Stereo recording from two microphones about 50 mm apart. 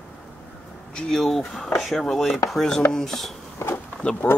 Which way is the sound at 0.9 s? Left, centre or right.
Centre.